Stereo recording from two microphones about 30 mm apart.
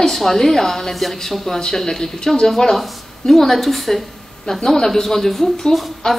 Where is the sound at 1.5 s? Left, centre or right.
Left.